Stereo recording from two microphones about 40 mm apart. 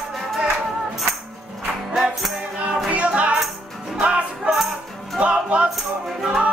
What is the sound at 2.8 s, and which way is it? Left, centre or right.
Music, right.